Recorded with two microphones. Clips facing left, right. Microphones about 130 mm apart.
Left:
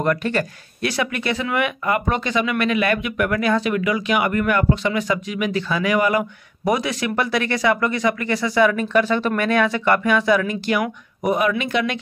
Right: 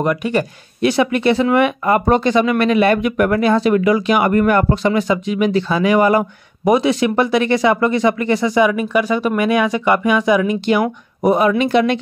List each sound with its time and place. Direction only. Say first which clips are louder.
0.0 s speech: right 3 dB; 15° right (ahead or behind); by 5.0 s 35° right (ahead or behind)
5.0 s speech: right 6 dB; 25° right (ahead or behind)